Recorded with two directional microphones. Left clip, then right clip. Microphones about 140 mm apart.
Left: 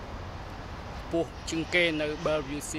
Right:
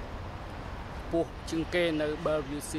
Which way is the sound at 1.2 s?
20° left (ahead or behind).